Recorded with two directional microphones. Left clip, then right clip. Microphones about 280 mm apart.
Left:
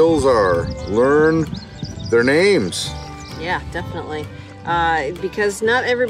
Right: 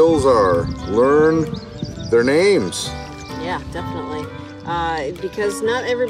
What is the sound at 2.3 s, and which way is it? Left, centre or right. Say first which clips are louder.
Speech: even; centre.